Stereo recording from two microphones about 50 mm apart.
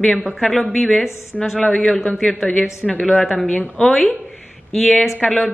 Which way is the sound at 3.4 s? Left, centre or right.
Left.